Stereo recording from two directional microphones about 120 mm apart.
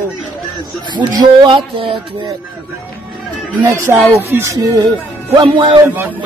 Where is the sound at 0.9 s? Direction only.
40° right (ahead or behind).